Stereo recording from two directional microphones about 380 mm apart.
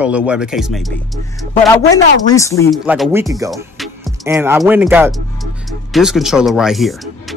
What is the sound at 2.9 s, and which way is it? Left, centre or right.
A man's voice, centre.